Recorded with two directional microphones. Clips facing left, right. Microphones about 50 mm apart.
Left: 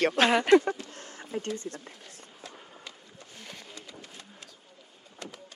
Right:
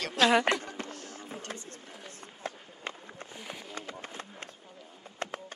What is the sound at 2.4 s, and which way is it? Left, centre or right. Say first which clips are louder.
Run: right 8 dB; right.